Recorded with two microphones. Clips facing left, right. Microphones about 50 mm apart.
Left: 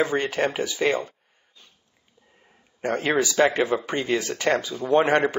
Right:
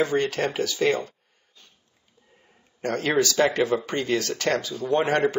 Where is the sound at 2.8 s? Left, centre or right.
Centre.